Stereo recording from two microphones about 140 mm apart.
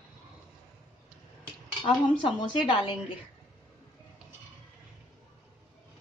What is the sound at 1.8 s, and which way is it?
A woman's voice, 35° left (ahead or behind).